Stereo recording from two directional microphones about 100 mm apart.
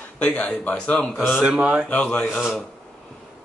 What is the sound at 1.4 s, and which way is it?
Speech, 10° right (ahead or behind).